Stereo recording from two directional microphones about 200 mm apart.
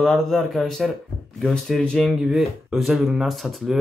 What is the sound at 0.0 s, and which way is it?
Speech, centre (ahead or behind).